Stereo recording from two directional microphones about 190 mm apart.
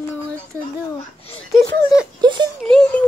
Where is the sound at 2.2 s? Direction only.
25° right (ahead or behind).